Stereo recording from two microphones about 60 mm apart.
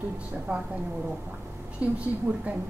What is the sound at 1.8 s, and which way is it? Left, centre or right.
Speech, right.